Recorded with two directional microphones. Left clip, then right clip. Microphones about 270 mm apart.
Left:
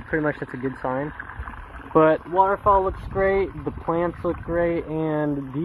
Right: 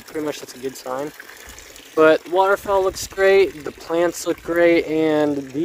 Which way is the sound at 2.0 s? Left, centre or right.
Right.